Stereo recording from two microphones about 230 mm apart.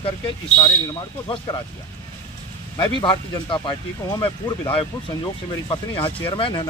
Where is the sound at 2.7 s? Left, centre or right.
Centre.